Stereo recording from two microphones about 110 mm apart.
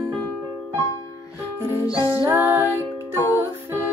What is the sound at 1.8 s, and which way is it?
Music, 35° left (ahead or behind).